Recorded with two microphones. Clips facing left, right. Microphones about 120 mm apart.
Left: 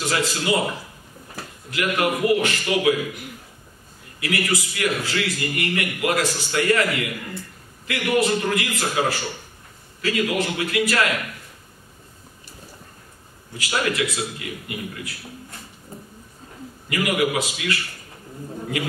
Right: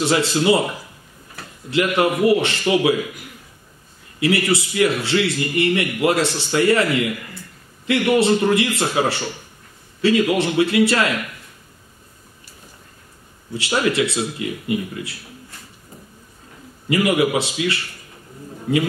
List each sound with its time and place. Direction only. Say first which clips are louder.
0.0 s a man's voice: right 6 dB; 30° right (ahead or behind)
1.7 s a man's voice: right 5 dB; 25° right (ahead or behind)
4.2 s a man's voice: right 6 dB; 30° right (ahead or behind)
13.5 s a man's voice: right 4 dB; 25° right (ahead or behind)
16.9 s a man's voice: right 4 dB; 25° right (ahead or behind)